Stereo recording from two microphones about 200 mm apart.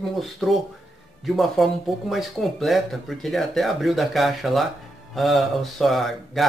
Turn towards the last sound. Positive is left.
turn(degrees=0)  # may be behind; listen again after turning